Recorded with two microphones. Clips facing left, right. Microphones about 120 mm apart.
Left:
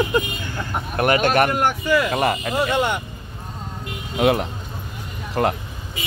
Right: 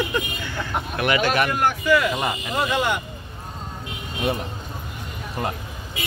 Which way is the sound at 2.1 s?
65° left (ahead or behind).